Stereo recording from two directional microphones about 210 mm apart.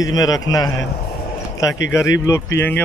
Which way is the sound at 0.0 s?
15° left (ahead or behind).